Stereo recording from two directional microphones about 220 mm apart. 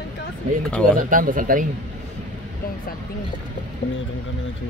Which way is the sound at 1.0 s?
40° right (ahead or behind).